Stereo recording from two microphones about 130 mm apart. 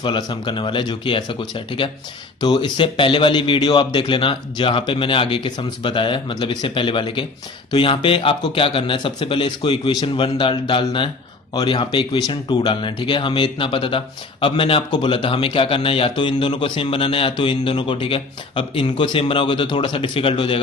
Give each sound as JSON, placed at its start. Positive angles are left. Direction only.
{"t": 0.0, "sound": "speech", "side_deg": 35}